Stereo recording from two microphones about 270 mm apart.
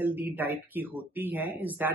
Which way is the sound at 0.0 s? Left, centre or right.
Centre.